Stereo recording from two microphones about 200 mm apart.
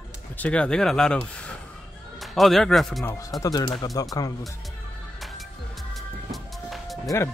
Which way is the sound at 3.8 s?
20° left (ahead or behind).